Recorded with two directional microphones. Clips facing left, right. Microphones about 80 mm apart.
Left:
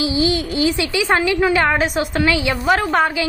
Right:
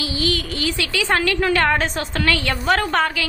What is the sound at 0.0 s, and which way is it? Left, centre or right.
A woman's voice, left.